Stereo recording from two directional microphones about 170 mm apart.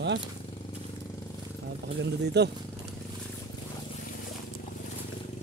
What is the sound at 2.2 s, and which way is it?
Speech, 80° right.